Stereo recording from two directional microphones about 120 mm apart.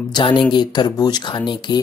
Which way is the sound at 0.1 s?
40° left (ahead or behind).